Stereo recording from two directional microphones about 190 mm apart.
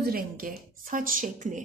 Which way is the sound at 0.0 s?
50° right (ahead or behind).